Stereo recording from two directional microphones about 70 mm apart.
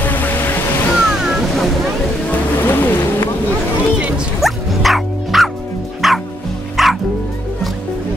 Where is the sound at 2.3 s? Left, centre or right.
Left.